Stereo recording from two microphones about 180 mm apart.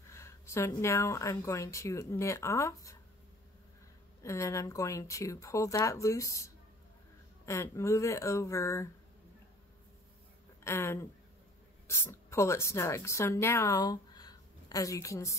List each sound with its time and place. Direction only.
0.1 s speech: 15° left (ahead or behind)
4.2 s speech: 15° left (ahead or behind)
10.6 s speech: 15° left (ahead or behind)